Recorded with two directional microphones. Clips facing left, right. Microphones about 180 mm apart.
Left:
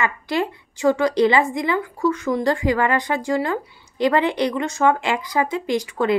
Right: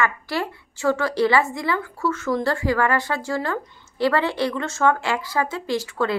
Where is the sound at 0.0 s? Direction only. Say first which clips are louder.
Left 2 dB; 20° left (ahead or behind).